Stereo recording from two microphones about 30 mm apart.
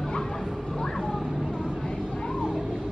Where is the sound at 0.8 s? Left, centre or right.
Centre.